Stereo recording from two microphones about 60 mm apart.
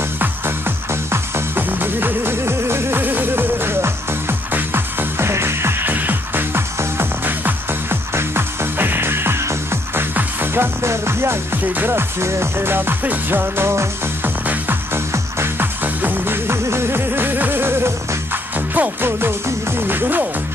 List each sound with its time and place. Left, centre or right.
0.2 s music: right
5.2 s music: right
8.1 s music: right
10.1 s music: right
11.6 s speech: right
11.9 s music: right
15.3 s music: right
15.8 s music: right